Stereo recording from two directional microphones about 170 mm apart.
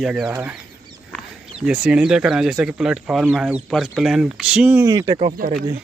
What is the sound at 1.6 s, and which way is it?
Speech, 5° right (ahead or behind).